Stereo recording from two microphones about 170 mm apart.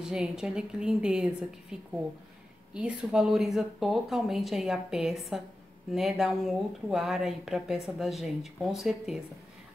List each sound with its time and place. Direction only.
0.0 s speech: 5° right (ahead or behind)